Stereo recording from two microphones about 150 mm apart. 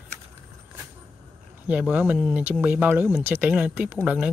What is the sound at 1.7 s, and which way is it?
Speech, 10° right (ahead or behind).